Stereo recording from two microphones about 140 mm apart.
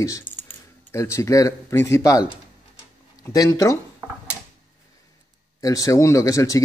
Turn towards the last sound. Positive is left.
turn(degrees=25)  # may be behind; listen again after turning